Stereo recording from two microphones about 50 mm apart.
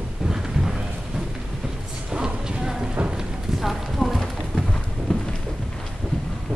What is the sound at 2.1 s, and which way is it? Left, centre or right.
Clip-clop, centre.